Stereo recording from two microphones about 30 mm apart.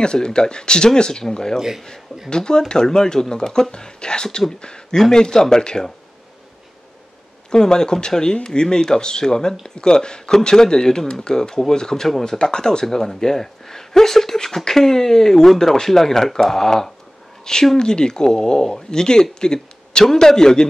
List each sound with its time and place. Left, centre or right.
0.0 s speech: left
5.1 s speech: left
7.5 s speech: left
12.4 s speech: left
12.8 s speech: centre
17.7 s speech: left
19.4 s a sound: left
20.1 s speech: centre